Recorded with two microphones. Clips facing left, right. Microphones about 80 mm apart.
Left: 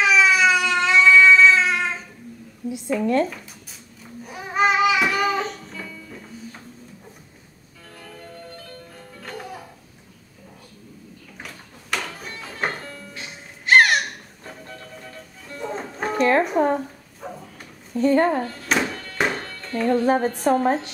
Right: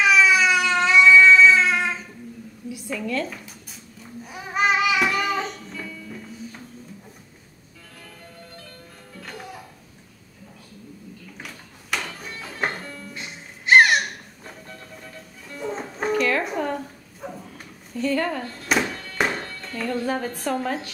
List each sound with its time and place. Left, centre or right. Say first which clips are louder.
0.2 s a sound: left 1 dB; centre
2.7 s a woman's voice: left 7 dB; left
4.2 s music: left 3 dB; centre
11.9 s music: left 1 dB; centre
15.4 s music: even; centre
16.1 s music: left 4 dB; left
17.2 s dog: even; centre
17.9 s speech: left 6 dB; left
18.4 s music: left 1 dB; centre
19.7 s music: left 7 dB; left
20.4 s music: left 7 dB; left